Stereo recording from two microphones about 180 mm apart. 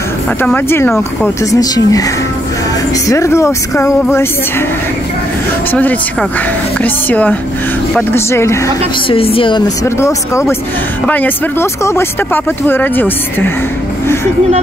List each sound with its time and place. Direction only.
0.4 s speech: 10° left (ahead or behind)
3.1 s speech: 15° left (ahead or behind)
5.7 s speech: 10° left (ahead or behind)
9.1 s speech: 30° left (ahead or behind)
9.8 s speech: 15° left (ahead or behind)